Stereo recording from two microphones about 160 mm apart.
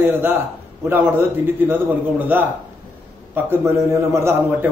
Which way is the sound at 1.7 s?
10° right (ahead or behind).